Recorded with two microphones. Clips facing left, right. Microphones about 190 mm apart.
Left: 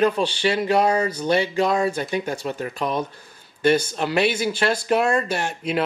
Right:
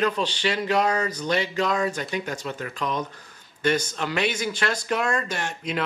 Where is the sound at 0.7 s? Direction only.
30° left (ahead or behind).